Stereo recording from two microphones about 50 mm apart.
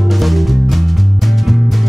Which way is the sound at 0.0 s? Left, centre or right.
Centre.